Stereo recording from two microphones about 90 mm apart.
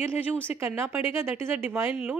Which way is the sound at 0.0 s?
25° right (ahead or behind).